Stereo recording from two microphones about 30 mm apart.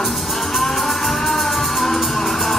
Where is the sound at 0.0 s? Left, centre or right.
Centre.